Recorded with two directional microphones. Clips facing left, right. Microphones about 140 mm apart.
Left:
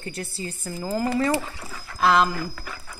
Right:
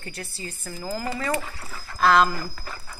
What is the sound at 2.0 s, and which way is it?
Speech, 10° left (ahead or behind).